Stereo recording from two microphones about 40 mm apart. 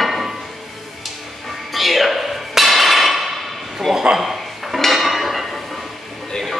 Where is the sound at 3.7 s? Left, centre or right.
Centre.